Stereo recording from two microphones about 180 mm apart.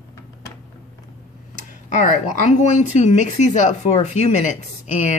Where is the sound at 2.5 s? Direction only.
40° left (ahead or behind).